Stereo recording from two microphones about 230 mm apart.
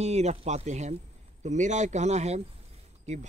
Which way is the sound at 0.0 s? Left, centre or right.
Right.